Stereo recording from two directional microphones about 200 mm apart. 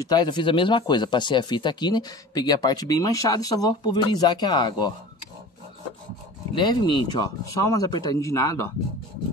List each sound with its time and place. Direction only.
0.0 s speech: 20° left (ahead or behind)
6.5 s speech: 20° left (ahead or behind)